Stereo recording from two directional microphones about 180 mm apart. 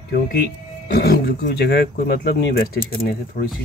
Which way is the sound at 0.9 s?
65° left (ahead or behind).